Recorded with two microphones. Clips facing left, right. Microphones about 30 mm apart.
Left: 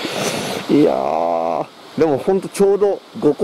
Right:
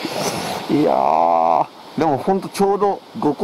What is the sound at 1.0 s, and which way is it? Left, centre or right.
Speech, centre.